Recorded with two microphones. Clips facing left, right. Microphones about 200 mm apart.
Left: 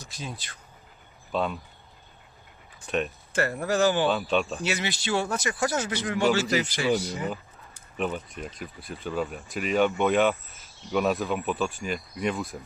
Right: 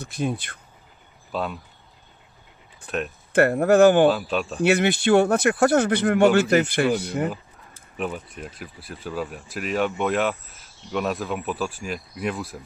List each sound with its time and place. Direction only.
0.0 s speech: 55° right (ahead or behind)
1.3 s speech: centre (ahead or behind)
2.9 s speech: centre (ahead or behind)
3.3 s speech: 55° right (ahead or behind)
4.1 s speech: centre (ahead or behind)
4.6 s speech: 55° right (ahead or behind)
8.0 s speech: centre (ahead or behind)